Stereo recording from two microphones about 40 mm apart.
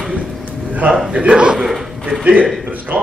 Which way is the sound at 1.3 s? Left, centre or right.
Right.